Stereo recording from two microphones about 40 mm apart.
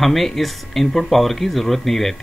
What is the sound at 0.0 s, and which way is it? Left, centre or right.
Speech, centre.